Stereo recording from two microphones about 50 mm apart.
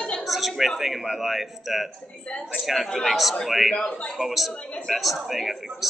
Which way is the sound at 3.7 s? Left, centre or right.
Centre.